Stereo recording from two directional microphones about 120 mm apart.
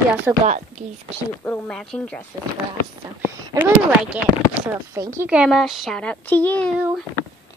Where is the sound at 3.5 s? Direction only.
30° right (ahead or behind).